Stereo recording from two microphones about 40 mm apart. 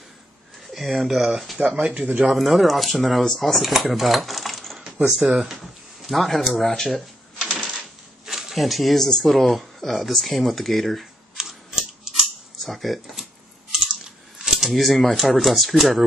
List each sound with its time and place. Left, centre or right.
0.7 s speech: centre
1.9 s speech: right
2.2 s speech: centre
5.1 s speech: centre
5.5 s speech: centre
8.3 s speech: centre
11.3 s camera: centre
12.5 s a sound: centre
13.9 s speech: centre